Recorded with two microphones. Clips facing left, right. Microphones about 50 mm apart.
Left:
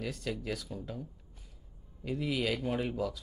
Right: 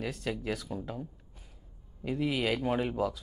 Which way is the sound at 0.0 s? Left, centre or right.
Right.